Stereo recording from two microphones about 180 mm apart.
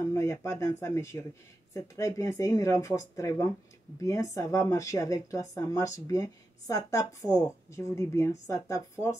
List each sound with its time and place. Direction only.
0.1 s speech: 15° left (ahead or behind)